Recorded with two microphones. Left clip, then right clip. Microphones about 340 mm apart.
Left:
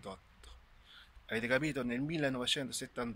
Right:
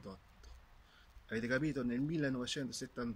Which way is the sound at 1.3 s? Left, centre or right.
Centre.